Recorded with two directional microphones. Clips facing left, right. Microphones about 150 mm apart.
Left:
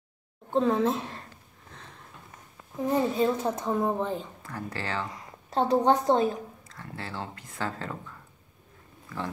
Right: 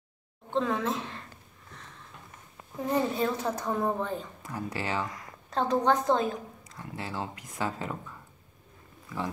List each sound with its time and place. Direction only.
0.5 s speech: 35° left (ahead or behind)
2.9 s a woman's voice: 20° left (ahead or behind)
4.4 s speech: 15° right (ahead or behind)
5.1 s a woman's voice: 30° left (ahead or behind)
6.7 s speech: 15° right (ahead or behind)